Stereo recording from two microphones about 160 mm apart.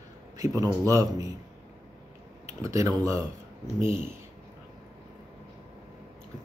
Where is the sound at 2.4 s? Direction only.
20° right (ahead or behind).